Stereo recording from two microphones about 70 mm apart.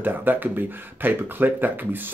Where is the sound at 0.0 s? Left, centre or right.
Right.